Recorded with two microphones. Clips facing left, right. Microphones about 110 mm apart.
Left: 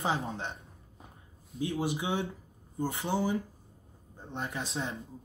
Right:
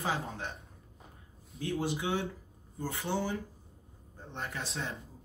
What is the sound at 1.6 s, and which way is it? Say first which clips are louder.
Speech: left 1 dB; 15° left (ahead or behind).